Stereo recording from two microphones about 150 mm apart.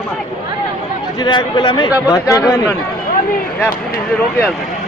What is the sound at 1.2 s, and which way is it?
Speech, 30° left (ahead or behind).